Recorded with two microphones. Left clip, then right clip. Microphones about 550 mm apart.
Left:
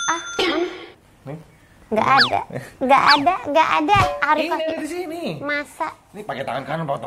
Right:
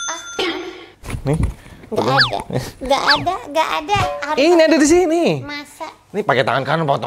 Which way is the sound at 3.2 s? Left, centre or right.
Left.